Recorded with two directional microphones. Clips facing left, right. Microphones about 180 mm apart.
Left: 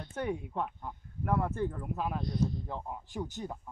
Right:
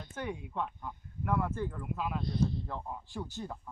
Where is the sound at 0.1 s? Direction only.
35° left (ahead or behind).